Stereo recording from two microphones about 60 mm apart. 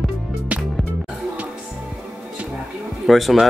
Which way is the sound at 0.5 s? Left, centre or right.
Centre.